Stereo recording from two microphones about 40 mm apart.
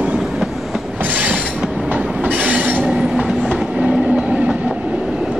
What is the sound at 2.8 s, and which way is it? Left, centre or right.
Train, centre.